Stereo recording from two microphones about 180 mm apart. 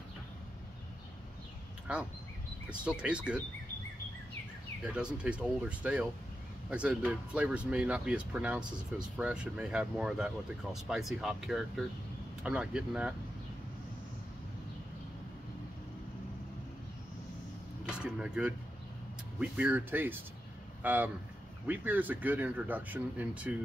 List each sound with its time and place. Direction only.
2.8 s speech: 5° right (ahead or behind)
4.9 s speech: 5° right (ahead or behind)
17.8 s a sound: 5° right (ahead or behind)
19.4 s speech: 5° right (ahead or behind)